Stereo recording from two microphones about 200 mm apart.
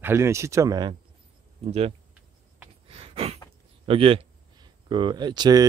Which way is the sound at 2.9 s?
30° right (ahead or behind).